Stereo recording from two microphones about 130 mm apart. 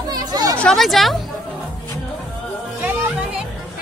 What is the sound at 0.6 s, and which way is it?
Speech, 5° left (ahead or behind).